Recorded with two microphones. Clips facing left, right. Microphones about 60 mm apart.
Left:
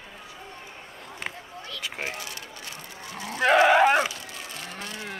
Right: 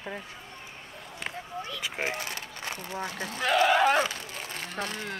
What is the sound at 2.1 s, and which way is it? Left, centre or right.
Speech, right.